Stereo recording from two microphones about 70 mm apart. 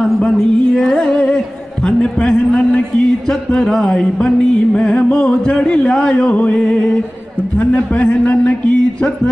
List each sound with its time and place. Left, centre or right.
0.7 s music: centre
1.9 s a sound: centre
3.3 s music: centre